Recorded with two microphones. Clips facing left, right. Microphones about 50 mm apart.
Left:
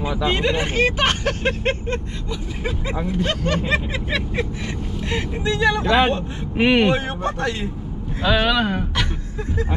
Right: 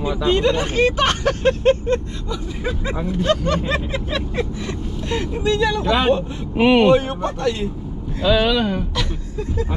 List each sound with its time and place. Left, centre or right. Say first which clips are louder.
0.0 s speech: right 3 dB; centre
3.1 s speech: right 4 dB; centre
5.1 s speech: right 4 dB; left
5.9 s speech: even; centre
8.4 s speech: even; centre
8.6 s speech: even; left